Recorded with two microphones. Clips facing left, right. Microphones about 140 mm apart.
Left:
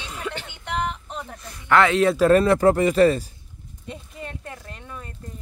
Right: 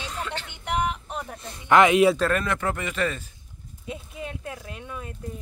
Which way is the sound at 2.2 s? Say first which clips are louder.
Left 10 dB; 35° left (ahead or behind).